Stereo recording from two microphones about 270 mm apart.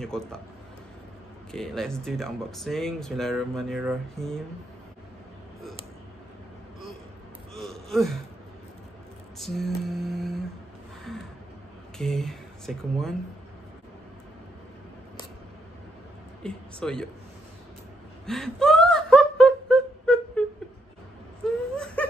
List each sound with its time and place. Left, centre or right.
0.0 s speech: centre
1.5 s speech: centre
7.5 s gasp: centre
9.4 s lullaby: centre
12.0 s speech: centre
16.4 s speech: centre
18.2 s whimper: centre
22.0 s laughter: centre